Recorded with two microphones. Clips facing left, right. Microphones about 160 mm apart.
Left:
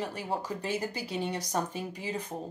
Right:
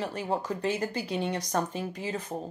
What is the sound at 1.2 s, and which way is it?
Speech, 10° left (ahead or behind).